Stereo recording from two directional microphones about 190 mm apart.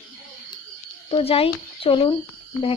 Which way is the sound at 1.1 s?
30° left (ahead or behind).